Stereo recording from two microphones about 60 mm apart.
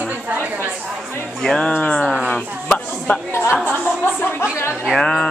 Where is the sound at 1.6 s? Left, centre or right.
Left.